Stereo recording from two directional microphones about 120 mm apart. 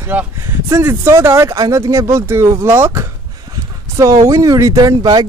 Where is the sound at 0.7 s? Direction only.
25° right (ahead or behind).